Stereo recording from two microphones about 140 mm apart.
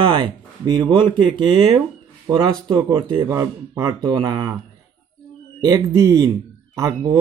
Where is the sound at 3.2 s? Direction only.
25° right (ahead or behind).